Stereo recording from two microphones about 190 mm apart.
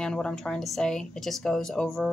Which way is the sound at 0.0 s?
5° left (ahead or behind).